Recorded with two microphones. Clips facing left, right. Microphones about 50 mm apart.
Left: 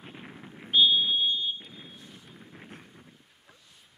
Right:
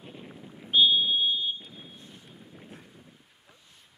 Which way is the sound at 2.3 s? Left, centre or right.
Left.